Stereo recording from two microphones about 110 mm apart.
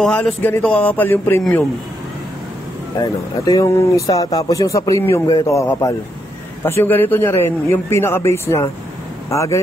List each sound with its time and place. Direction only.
0.0 s speech: 5° left (ahead or behind)
3.4 s speech: 30° left (ahead or behind)